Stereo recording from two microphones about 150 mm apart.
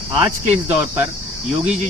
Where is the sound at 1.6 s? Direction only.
50° right (ahead or behind).